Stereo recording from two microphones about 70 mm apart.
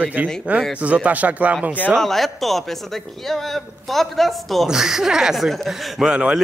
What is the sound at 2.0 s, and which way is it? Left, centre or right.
A man's voice, centre.